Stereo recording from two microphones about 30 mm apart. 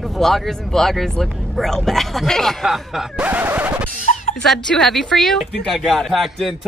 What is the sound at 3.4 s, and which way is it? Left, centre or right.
Scratch, right.